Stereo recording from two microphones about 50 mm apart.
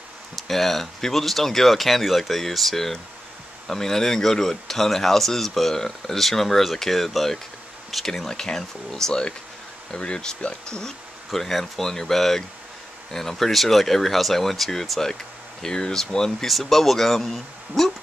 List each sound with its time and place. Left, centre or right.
0.4 s speech: centre
11.2 s speech: centre